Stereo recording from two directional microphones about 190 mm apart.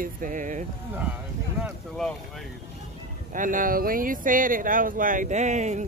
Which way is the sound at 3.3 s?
45° right (ahead or behind).